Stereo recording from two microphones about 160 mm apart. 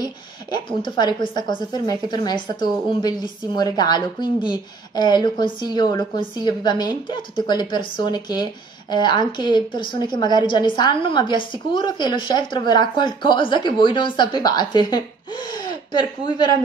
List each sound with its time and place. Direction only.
0.7 s a woman's voice: 30° left (ahead or behind)